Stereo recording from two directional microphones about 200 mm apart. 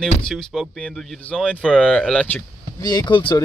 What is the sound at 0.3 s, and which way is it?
Speech, centre (ahead or behind).